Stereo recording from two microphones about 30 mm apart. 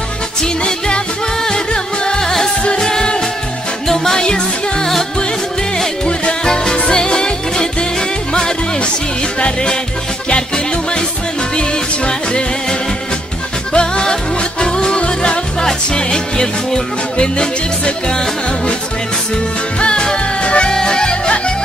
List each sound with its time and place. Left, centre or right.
0.4 s music: left
6.0 s music: left
13.7 s music: left
19.8 s music: left